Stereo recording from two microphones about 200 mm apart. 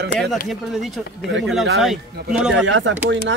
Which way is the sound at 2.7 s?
70° right (ahead or behind).